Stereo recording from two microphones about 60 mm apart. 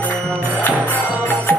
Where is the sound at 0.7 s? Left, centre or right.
Right.